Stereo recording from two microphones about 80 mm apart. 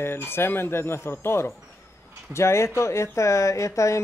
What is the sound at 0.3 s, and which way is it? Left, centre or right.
Speech, left.